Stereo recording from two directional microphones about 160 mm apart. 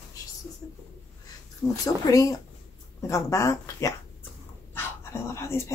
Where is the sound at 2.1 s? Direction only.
20° left (ahead or behind).